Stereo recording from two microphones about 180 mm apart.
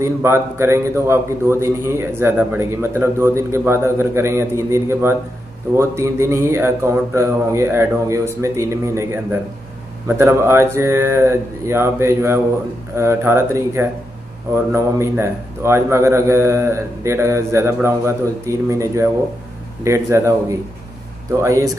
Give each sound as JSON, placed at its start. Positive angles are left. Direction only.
{"t": 0.0, "sound": "a man's voice", "side_deg": -15}